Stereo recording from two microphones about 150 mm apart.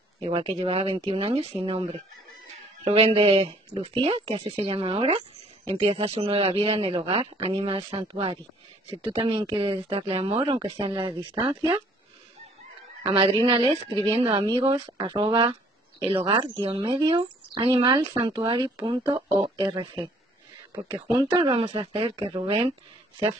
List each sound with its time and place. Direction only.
0.2 s speech: 35° right (ahead or behind)
13.0 s speech: 35° right (ahead or behind)
16.8 s speech: 30° right (ahead or behind)
18.8 s speech: 20° right (ahead or behind)
19.5 s speech: 35° right (ahead or behind)
21.4 s speech: 40° right (ahead or behind)